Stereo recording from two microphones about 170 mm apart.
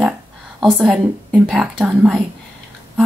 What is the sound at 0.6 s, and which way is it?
Speech, centre (ahead or behind).